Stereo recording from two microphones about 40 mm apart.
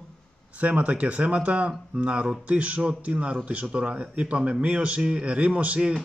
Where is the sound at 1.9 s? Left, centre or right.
Right.